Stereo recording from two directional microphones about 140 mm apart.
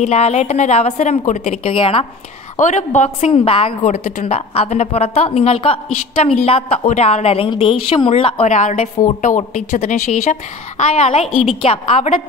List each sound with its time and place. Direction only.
0.0 s a woman's voice: 50° left (ahead or behind)
2.6 s a woman's voice: 60° left (ahead or behind); by 3.7 s 40° left (ahead or behind)
3.8 s a woman's voice: 55° left (ahead or behind); by 8.5 s 40° left (ahead or behind)
8.5 s a woman's voice: 60° left (ahead or behind)
11.6 s a woman's voice: 45° left (ahead or behind)